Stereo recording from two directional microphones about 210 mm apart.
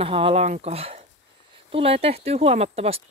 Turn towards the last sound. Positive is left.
turn(degrees=-30)  # may be behind; listen again after turning